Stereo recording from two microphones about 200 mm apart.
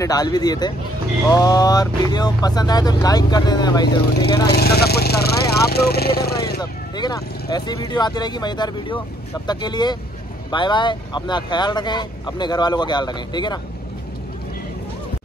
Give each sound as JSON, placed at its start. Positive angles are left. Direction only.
{"t": 0.0, "sound": "speech", "side_deg": 20}
{"t": 4.5, "sound": "speech", "side_deg": 50}
{"t": 6.6, "sound": "speech", "side_deg": 20}